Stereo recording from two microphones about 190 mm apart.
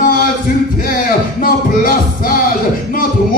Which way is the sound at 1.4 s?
50° left (ahead or behind).